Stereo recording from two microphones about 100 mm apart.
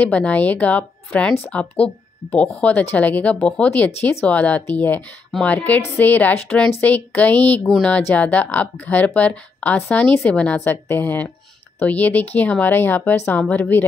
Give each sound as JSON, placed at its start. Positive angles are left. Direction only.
{"t": 0.0, "sound": "a woman's voice", "side_deg": 15}